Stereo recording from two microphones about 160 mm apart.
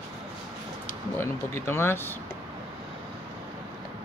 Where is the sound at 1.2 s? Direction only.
15° left (ahead or behind).